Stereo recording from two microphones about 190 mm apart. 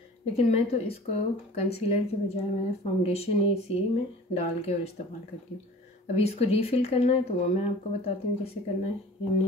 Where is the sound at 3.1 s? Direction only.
35° left (ahead or behind).